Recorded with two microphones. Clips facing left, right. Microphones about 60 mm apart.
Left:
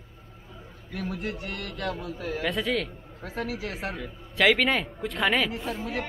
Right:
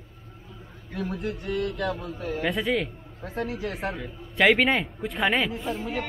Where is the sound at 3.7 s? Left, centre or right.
Right.